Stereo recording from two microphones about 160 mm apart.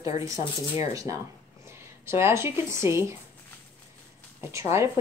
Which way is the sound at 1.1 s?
20° right (ahead or behind).